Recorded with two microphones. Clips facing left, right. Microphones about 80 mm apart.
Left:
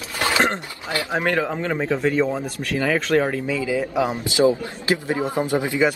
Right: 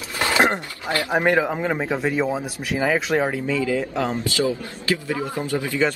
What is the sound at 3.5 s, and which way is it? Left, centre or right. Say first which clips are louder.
A man's voice: even; centre.